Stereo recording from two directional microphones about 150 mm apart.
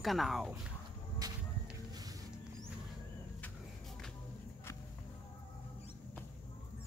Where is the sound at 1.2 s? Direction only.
25° right (ahead or behind).